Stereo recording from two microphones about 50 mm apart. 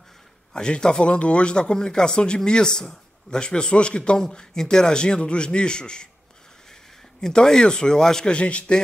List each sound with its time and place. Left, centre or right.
0.5 s speech: centre
8.3 s a man's voice: left